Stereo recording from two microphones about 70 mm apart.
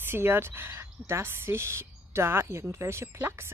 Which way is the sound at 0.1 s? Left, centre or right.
Right.